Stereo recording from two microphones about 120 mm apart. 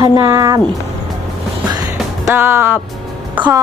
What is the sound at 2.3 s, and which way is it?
Speech, 15° right (ahead or behind).